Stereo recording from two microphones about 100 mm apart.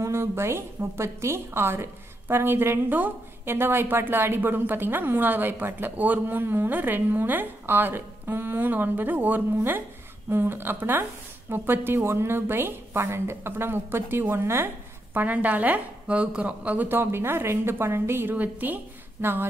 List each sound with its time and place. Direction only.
0.0 s a woman's voice: 25° right (ahead or behind)